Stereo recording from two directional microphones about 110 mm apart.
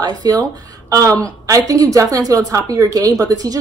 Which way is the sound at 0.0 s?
35° right (ahead or behind).